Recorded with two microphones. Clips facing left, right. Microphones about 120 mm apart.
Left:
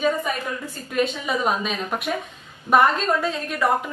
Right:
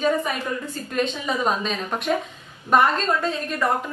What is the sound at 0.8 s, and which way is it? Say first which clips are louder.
A woman's voice: left 2 dB; 5° left (ahead or behind).